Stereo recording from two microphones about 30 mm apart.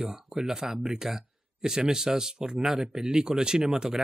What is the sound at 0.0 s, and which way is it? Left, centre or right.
Speech, centre.